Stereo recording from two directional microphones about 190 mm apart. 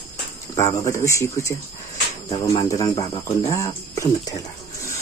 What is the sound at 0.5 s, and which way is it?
Speech, 15° left (ahead or behind).